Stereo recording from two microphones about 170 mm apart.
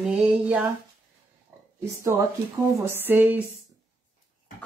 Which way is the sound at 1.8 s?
15° right (ahead or behind).